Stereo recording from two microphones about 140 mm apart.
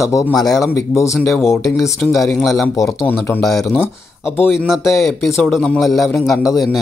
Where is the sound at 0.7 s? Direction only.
20° left (ahead or behind).